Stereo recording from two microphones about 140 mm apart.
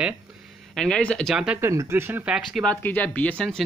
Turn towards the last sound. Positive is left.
turn(degrees=5)  # may be behind; listen again after turning